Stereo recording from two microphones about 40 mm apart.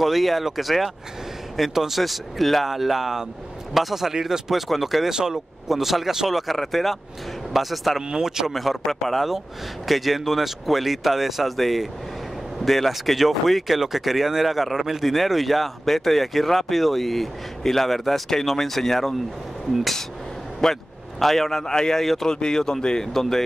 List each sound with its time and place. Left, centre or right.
0.0 s speech: centre
5.1 s speech: centre
5.7 s speech: centre
8.1 s speech: centre
8.5 s a man's voice: centre
20.6 s a man's voice: centre
22.0 s speech: centre
22.3 s a man's voice: centre